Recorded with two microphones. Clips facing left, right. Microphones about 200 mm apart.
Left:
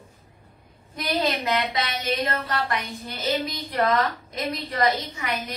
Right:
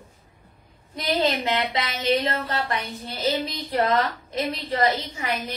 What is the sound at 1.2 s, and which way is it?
A woman's voice, 25° right (ahead or behind).